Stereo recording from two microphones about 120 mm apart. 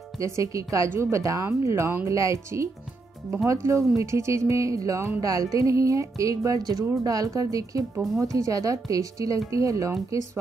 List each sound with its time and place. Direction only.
0.2 s speech: 25° right (ahead or behind)